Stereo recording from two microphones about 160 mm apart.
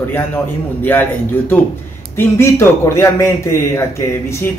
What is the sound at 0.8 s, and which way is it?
Speech, 10° left (ahead or behind).